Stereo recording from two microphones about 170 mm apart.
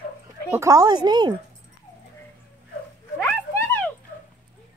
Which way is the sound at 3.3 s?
10° left (ahead or behind).